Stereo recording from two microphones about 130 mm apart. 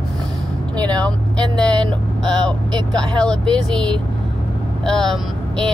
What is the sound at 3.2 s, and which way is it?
Speech, 5° left (ahead or behind).